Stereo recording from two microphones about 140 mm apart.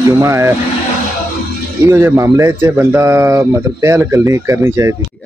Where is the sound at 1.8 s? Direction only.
15° right (ahead or behind).